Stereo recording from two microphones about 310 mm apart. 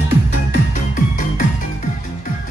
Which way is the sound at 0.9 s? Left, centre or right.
Left.